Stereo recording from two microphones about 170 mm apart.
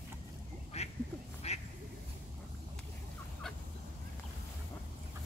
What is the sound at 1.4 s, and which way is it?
Quack, 40° left (ahead or behind).